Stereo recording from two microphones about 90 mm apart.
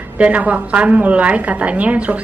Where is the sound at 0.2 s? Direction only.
15° right (ahead or behind).